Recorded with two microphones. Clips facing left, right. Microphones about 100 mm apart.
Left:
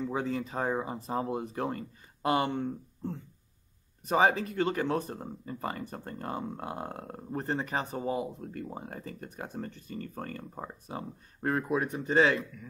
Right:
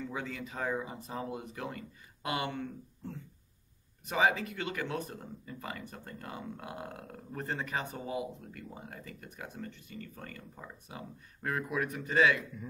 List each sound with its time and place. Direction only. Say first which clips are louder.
0.0 s speech: left 7 dB; 35° left (ahead or behind)